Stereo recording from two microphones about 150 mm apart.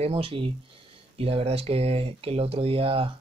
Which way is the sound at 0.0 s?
35° right (ahead or behind).